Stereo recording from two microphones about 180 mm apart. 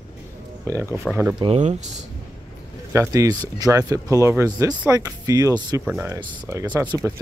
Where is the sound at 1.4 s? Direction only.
35° right (ahead or behind).